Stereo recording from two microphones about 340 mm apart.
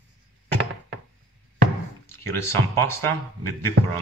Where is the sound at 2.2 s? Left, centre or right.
Centre.